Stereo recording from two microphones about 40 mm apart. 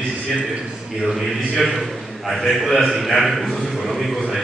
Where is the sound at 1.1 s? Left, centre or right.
Centre.